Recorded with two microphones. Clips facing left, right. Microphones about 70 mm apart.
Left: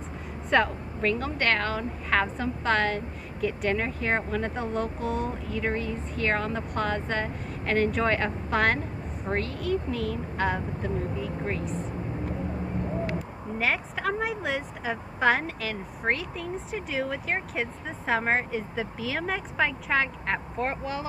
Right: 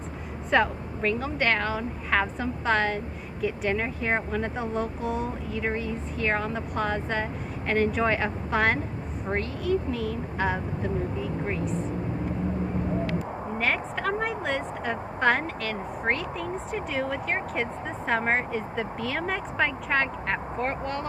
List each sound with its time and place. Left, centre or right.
0.5 s a woman's voice: centre
13.6 s a woman's voice: centre